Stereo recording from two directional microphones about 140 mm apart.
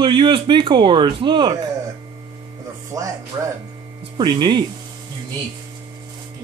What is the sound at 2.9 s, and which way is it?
Speech, 25° right (ahead or behind).